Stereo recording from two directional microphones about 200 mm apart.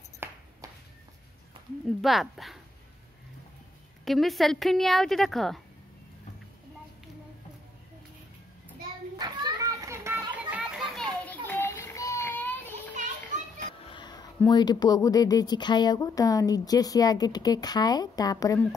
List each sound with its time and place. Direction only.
0.2 s ping: 10° right (ahead or behind)
1.9 s a woman's voice: centre (ahead or behind)
4.0 s a woman's voice: centre (ahead or behind)
9.2 s children playing: 20° right (ahead or behind); by 12.7 s 10° left (ahead or behind)
13.8 s a sound: 20° left (ahead or behind)
14.5 s speech: 20° left (ahead or behind)